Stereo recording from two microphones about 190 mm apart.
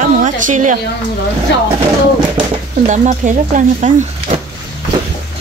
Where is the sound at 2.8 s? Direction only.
40° right (ahead or behind).